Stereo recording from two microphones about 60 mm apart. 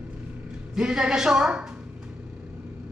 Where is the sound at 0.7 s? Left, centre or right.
Centre.